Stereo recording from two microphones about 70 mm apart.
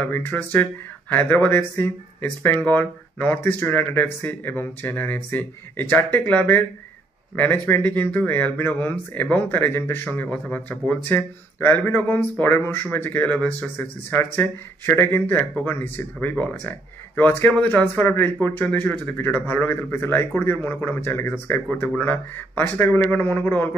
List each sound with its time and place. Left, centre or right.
0.0 s speech: left
10.0 s speech: left